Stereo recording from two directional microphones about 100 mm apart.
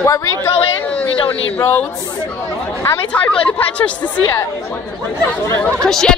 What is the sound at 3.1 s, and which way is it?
Speech, 15° left (ahead or behind).